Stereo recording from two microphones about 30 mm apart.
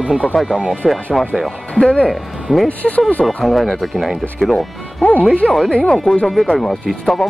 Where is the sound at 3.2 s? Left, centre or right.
Centre.